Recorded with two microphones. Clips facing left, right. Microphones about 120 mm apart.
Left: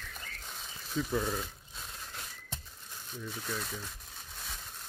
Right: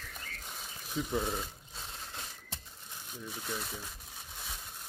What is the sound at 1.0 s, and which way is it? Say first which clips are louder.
Speech: left 1 dB; 15° right (ahead or behind).